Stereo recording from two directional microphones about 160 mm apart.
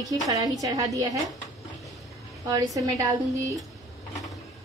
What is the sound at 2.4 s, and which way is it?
Speech, 20° right (ahead or behind).